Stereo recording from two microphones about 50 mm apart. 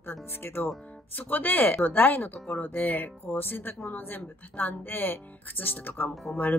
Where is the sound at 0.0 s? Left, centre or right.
Left.